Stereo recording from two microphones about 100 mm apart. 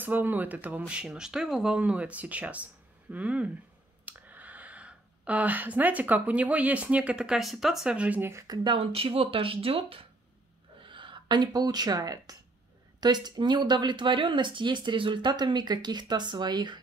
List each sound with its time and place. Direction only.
0.0 s speech: 20° right (ahead or behind)
8.2 s speech: 25° right (ahead or behind)
8.7 s speech: 75° right (ahead or behind)
10.8 s speech: 55° right (ahead or behind)